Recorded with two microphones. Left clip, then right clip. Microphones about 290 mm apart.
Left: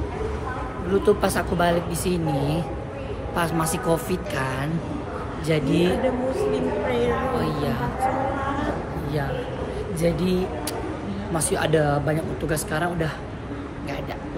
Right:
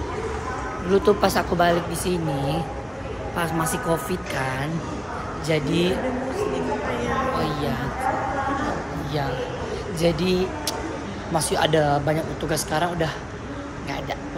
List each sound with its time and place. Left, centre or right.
1.0 s a woman's voice: centre
7.3 s a woman's voice: centre
9.9 s a woman's voice: centre